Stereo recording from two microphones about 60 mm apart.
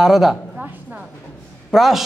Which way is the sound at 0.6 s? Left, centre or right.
Right.